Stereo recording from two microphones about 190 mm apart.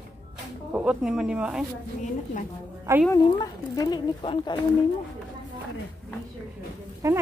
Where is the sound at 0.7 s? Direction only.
5° right (ahead or behind).